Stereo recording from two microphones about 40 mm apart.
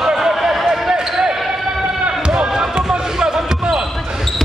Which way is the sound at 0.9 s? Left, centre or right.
Centre.